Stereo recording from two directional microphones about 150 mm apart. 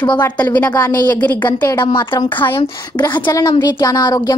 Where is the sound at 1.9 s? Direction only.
30° left (ahead or behind).